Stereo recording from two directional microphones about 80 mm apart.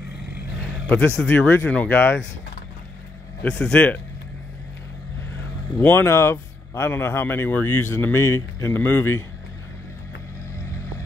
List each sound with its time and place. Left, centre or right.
0.8 s speech: centre
3.4 s speech: centre
5.8 s speech: left